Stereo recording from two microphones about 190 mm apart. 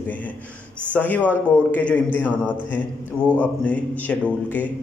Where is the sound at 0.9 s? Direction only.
10° left (ahead or behind).